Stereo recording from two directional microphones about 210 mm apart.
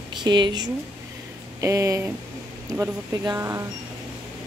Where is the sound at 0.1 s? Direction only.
20° right (ahead or behind).